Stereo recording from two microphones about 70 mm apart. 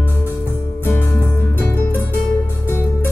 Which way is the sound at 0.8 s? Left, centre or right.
Left.